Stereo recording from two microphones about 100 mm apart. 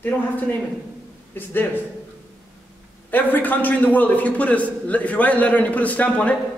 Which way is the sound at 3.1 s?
15° left (ahead or behind).